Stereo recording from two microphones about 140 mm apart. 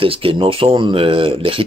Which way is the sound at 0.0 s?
40° right (ahead or behind).